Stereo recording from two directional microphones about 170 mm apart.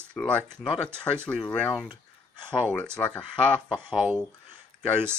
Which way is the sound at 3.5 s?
30° left (ahead or behind).